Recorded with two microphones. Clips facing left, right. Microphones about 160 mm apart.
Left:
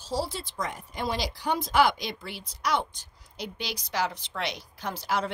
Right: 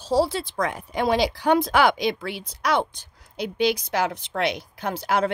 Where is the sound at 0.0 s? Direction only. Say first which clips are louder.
Right 9 dB; 65° right (ahead or behind).